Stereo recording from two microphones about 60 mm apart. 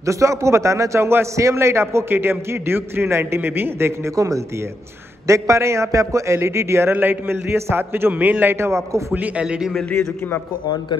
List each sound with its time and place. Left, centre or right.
0.0 s a man's voice: right
4.1 s a man's voice: right
5.2 s a man's voice: right
8.1 s a man's voice: right
8.5 s a man's voice: right
9.1 s a man's voice: right